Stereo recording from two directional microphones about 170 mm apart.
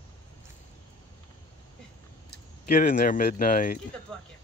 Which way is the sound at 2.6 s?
50° left (ahead or behind).